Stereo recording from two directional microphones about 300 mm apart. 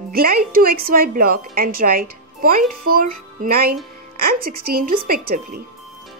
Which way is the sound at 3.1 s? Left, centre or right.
Right.